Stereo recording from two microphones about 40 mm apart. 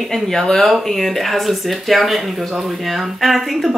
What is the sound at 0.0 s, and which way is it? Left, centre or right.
Speech, centre.